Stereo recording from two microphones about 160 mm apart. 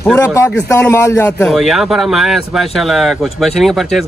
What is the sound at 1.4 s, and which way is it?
Speech, centre (ahead or behind).